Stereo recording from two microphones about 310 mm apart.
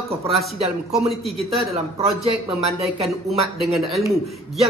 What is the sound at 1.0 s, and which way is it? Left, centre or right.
Speech, centre.